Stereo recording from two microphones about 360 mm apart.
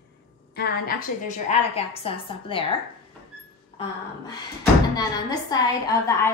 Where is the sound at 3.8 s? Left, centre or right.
Centre.